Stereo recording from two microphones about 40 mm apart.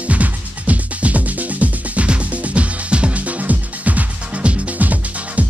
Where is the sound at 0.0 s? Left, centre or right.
Right.